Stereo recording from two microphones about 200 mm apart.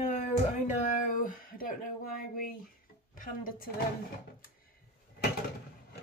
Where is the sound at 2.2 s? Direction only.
45° left (ahead or behind).